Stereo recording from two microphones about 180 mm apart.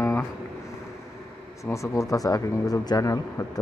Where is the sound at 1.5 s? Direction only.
15° left (ahead or behind).